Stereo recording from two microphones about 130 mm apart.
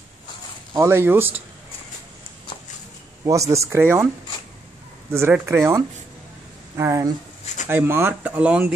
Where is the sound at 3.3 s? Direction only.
25° right (ahead or behind).